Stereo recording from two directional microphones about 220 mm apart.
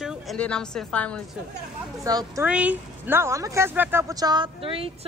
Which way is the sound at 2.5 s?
5° right (ahead or behind).